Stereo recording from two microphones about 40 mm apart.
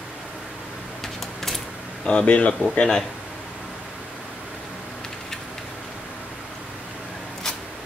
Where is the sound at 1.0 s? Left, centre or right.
Centre.